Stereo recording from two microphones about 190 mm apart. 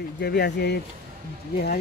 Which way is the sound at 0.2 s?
60° left (ahead or behind).